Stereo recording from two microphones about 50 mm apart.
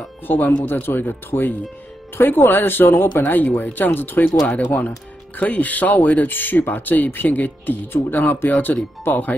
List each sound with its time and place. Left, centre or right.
0.3 s speech: left
5.4 s speech: left